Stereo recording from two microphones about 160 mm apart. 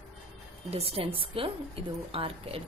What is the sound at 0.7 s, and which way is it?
A woman's voice, 40° right (ahead or behind).